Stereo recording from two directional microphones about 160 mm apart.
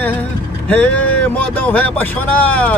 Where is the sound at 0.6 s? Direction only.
10° left (ahead or behind).